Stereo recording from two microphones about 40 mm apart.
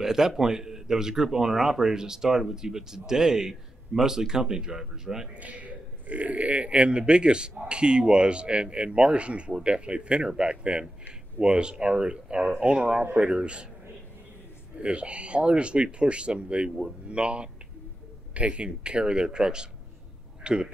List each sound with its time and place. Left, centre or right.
0.0 s a man's voice: centre
5.4 s speech: right
14.8 s speech: right